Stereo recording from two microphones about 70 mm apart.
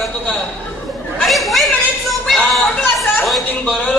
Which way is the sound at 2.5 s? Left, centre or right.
Centre.